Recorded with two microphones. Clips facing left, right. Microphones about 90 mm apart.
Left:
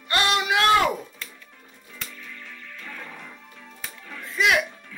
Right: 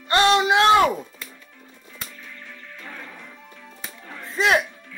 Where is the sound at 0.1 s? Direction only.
30° right (ahead or behind).